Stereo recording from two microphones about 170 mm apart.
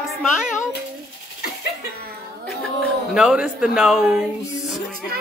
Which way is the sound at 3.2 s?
5° right (ahead or behind).